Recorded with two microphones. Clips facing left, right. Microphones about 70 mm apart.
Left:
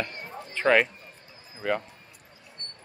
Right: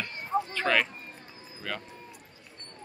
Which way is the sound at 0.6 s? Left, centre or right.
Centre.